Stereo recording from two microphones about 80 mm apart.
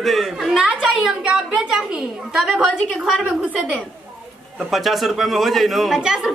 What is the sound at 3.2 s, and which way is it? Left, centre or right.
Speech, centre.